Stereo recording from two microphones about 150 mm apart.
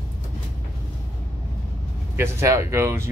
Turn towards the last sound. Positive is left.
turn(degrees=-20)  # may be behind; listen again after turning